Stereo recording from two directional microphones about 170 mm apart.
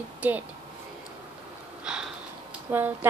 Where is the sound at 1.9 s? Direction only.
5° right (ahead or behind).